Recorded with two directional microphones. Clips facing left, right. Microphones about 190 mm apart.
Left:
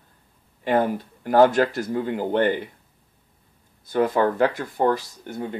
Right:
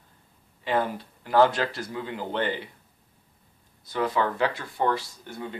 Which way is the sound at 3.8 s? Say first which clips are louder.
Left 6 dB; 50° left (ahead or behind).